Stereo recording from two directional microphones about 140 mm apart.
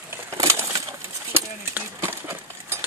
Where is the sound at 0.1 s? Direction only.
20° right (ahead or behind).